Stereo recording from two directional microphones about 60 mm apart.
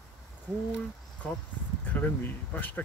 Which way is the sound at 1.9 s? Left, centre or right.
Left.